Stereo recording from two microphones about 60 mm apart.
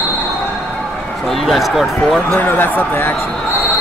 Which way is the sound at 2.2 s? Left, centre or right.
Left.